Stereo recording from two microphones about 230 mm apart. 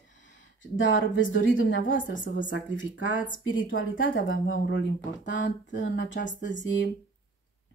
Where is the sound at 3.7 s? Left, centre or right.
Left.